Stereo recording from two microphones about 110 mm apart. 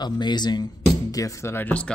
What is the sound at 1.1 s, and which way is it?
Speech, 30° left (ahead or behind).